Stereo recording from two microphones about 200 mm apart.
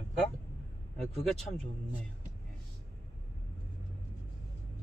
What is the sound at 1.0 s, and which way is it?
Speech, centre (ahead or behind).